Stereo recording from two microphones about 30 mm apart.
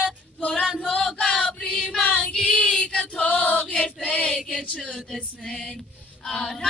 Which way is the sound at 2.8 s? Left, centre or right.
Left.